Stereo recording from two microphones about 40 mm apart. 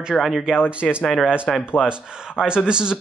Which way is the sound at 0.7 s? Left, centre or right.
Right.